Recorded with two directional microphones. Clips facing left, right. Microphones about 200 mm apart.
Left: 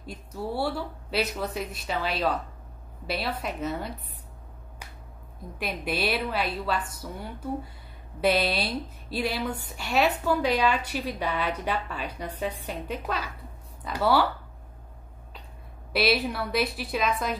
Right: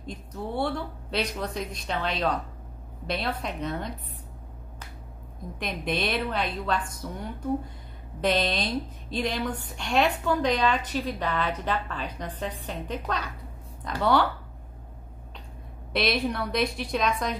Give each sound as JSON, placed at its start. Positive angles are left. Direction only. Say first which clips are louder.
{"t": 0.0, "sound": "a woman's voice", "louder": "left 1 dB", "side_deg": 5}
{"t": 5.6, "sound": "a woman's voice", "louder": "even", "side_deg": 5}
{"t": 15.9, "sound": "a woman's voice", "louder": "left 1 dB", "side_deg": 5}